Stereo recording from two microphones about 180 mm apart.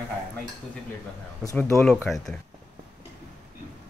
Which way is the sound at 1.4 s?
15° left (ahead or behind).